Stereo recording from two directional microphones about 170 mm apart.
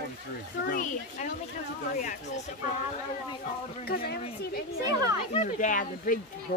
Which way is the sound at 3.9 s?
65° left (ahead or behind).